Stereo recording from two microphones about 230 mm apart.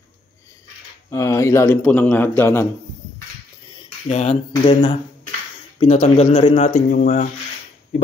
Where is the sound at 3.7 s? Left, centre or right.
Left.